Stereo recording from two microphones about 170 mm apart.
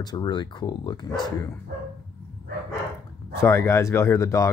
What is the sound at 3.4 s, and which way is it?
Speech, 15° left (ahead or behind).